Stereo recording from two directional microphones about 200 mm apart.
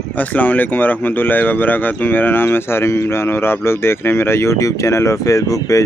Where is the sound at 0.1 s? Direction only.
10° left (ahead or behind).